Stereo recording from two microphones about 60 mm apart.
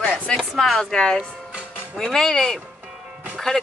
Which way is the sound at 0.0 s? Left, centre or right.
Centre.